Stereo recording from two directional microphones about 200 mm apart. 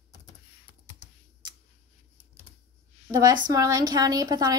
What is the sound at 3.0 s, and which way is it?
Speech, 20° right (ahead or behind).